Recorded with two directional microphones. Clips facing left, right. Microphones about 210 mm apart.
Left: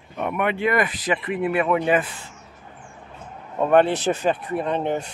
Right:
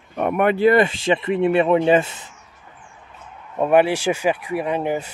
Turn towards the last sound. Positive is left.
turn(degrees=-5)  # may be behind; listen again after turning